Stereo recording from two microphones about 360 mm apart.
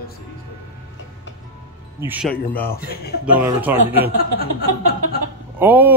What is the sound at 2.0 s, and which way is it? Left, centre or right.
Speech, centre.